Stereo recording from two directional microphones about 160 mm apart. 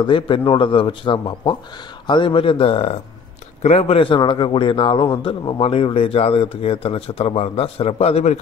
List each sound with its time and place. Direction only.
0.0 s a man's voice: 30° left (ahead or behind)